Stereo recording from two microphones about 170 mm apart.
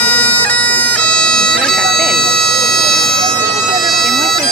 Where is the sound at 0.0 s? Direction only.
5° left (ahead or behind).